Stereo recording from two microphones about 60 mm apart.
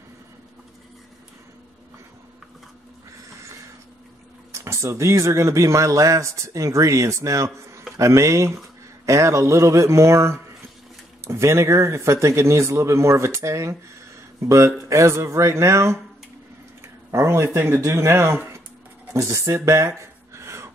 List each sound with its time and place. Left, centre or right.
4.5 s speech: right
17.1 s speech: right
19.1 s speech: right
19.6 s a sound: right